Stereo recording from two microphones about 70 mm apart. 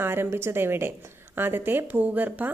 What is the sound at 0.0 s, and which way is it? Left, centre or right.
A woman's voice, right.